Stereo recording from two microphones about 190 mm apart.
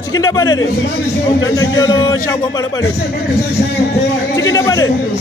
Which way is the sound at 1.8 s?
20° left (ahead or behind).